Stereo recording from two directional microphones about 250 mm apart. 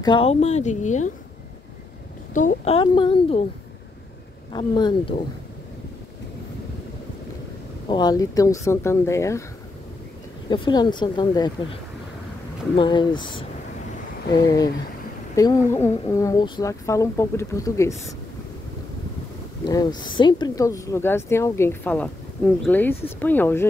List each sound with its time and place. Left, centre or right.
0.0 s a woman's voice: left
2.3 s a woman's voice: left
4.5 s a woman's voice: centre
7.9 s a woman's voice: centre
10.5 s a woman's voice: centre
19.7 s a woman's voice: centre